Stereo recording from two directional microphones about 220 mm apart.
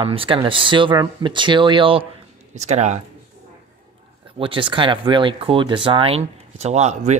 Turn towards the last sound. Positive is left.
turn(degrees=-30)  # may be behind; listen again after turning